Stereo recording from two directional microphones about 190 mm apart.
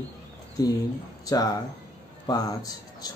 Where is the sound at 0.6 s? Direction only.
20° left (ahead or behind).